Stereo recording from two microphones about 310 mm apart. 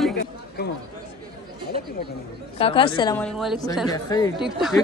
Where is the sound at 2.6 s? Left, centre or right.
Centre.